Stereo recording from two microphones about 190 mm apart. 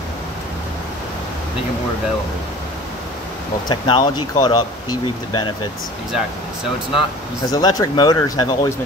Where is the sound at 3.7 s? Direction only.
25° left (ahead or behind).